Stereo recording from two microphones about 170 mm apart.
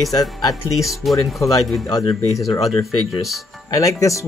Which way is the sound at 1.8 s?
15° left (ahead or behind).